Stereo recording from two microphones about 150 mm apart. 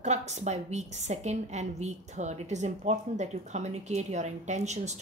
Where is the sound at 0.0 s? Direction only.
50° right (ahead or behind).